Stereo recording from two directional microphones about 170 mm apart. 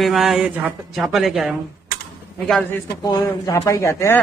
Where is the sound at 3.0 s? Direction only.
20° left (ahead or behind).